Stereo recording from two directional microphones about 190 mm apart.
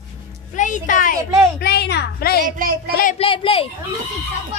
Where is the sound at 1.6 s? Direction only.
60° left (ahead or behind).